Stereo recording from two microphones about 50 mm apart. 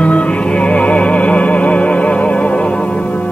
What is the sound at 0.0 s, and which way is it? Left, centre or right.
Music, left.